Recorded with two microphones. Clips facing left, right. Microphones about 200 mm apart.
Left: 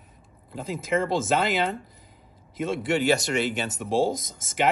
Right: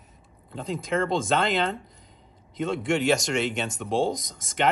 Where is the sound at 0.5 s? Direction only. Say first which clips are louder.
Left 1 dB; 5° left (ahead or behind).